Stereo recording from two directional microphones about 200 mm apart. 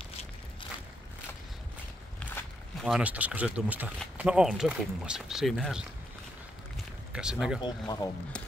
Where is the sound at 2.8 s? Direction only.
5° right (ahead or behind).